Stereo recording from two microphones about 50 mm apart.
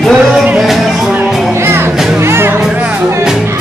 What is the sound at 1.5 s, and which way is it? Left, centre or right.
Music, right.